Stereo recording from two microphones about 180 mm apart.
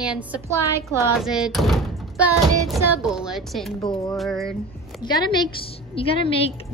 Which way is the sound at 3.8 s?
25° left (ahead or behind).